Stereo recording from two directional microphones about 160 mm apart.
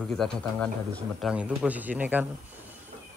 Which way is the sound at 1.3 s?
10° right (ahead or behind).